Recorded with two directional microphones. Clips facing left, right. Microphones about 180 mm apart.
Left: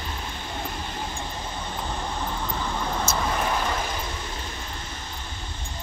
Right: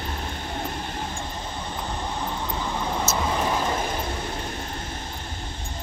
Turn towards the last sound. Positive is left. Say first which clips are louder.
# right 4 dB
turn(degrees=-50)  # may be behind; listen again after turning